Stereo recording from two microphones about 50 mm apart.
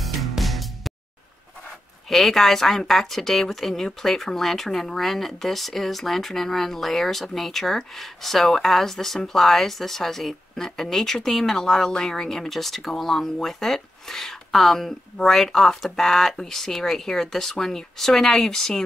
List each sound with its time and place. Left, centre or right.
0.0 s music: centre
2.0 s speech: centre